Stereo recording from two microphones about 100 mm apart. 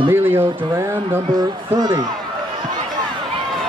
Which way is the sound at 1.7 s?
45° right (ahead or behind).